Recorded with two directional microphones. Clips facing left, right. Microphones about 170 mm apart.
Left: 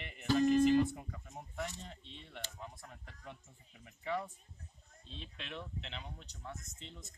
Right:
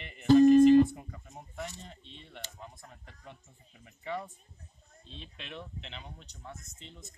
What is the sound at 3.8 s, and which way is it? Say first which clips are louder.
Speech: right 1 dB; centre (ahead or behind).